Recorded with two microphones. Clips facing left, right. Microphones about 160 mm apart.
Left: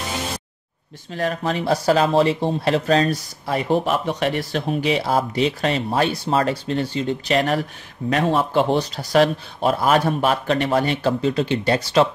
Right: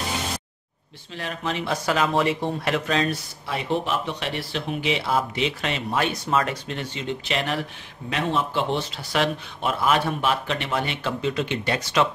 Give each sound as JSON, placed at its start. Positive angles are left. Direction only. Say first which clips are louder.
{"t": 1.1, "sound": "speech", "louder": "left 6 dB", "side_deg": 40}